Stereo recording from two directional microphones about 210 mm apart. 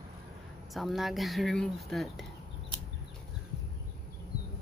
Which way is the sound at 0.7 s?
Centre (ahead or behind).